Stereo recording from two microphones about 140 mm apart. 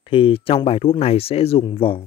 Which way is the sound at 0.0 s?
40° left (ahead or behind).